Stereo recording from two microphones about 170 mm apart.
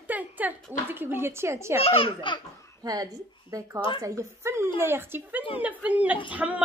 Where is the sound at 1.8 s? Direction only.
30° left (ahead or behind).